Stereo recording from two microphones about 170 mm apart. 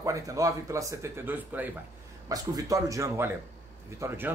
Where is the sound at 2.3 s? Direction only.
20° right (ahead or behind).